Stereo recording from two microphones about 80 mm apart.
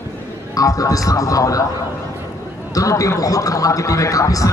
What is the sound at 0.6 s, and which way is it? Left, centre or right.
Speech, left.